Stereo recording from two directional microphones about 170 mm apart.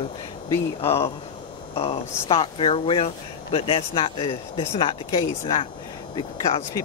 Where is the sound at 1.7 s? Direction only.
35° left (ahead or behind).